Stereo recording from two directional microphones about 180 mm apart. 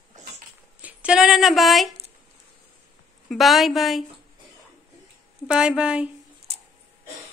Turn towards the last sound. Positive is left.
turn(degrees=-5)  # may be behind; listen again after turning